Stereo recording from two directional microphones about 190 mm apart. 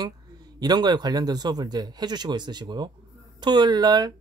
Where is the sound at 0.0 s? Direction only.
20° right (ahead or behind).